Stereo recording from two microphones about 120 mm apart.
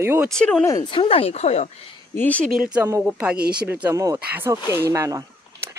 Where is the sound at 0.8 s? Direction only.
50° left (ahead or behind); by 1.7 s 65° left (ahead or behind).